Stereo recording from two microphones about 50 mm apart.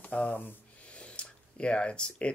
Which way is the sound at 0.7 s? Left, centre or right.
Left.